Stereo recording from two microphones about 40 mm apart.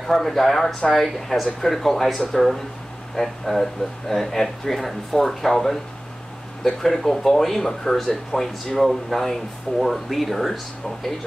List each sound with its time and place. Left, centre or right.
0.0 s speech: centre
8.3 s speech: left
8.7 s speech: centre